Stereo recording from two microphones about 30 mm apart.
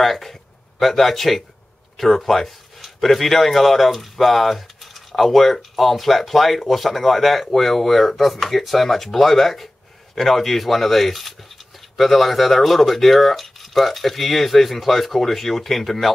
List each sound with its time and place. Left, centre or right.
0.0 s speech: centre